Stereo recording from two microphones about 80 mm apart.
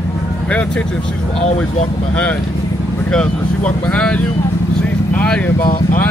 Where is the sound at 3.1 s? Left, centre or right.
Centre.